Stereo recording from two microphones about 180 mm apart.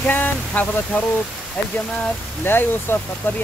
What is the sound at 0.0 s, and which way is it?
Speech, 10° left (ahead or behind).